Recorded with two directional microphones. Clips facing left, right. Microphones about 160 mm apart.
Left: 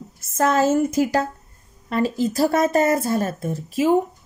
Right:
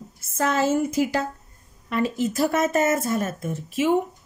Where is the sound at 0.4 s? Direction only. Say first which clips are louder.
Left 4 dB; 45° left (ahead or behind).